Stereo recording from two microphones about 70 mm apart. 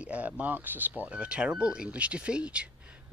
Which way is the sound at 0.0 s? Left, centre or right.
Centre.